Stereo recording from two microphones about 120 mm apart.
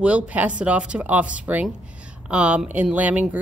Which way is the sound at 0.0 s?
10° right (ahead or behind).